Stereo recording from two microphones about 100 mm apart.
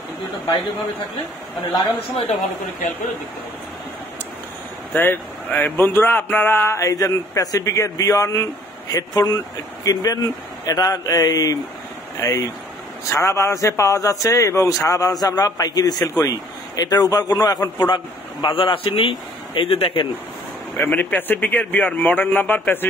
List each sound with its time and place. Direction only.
4.9 s a man's voice: 20° left (ahead or behind)
6.8 s a man's voice: 35° left (ahead or behind); by 20.1 s 65° left (ahead or behind)
20.7 s a man's voice: 20° left (ahead or behind)